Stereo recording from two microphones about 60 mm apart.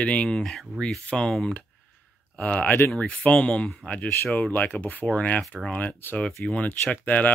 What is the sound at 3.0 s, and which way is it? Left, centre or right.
Speech, centre.